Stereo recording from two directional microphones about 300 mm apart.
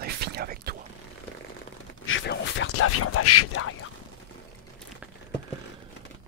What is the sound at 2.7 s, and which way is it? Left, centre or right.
Speech, left.